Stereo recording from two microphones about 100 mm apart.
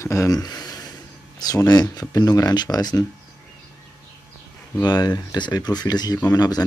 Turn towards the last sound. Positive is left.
turn(degrees=40)  # may be behind; listen again after turning